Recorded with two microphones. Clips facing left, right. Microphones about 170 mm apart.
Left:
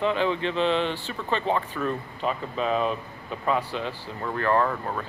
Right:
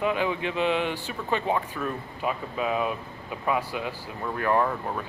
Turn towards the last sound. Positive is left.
turn(degrees=-5)  # may be behind; listen again after turning